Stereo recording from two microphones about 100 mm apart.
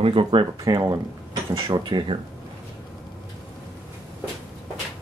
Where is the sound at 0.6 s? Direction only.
40° right (ahead or behind).